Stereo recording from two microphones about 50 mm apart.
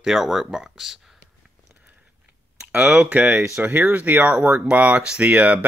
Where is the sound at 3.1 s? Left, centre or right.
Right.